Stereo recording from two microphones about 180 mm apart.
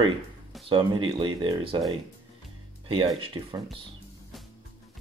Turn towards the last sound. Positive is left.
turn(degrees=-30)  # may be behind; listen again after turning